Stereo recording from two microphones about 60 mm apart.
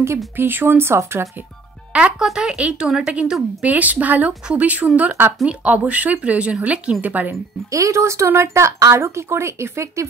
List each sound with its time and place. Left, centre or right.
0.4 s speech: right
1.9 s speech: centre
3.6 s speech: right
7.7 s speech: right